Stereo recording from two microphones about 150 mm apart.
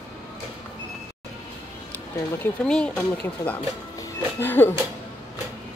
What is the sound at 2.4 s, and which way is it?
Speech, 5° left (ahead or behind).